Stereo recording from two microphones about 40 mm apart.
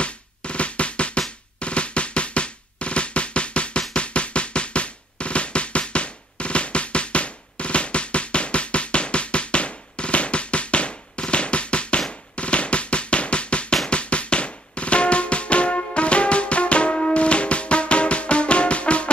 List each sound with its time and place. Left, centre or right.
0.0 s music: left
1.6 s drum: left
3.9 s music: left